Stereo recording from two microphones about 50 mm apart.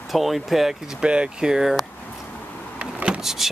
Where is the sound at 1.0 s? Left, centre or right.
Right.